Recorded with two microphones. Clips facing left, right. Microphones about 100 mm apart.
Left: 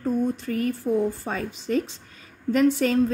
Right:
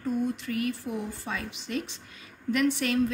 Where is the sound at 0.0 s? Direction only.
35° left (ahead or behind).